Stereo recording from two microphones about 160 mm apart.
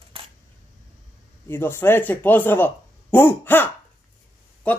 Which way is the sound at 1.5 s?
15° left (ahead or behind).